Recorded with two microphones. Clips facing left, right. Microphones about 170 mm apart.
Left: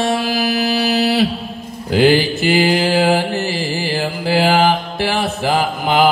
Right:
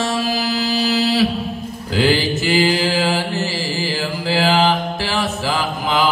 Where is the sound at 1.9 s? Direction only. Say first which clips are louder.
Left 4 dB; 55° left (ahead or behind).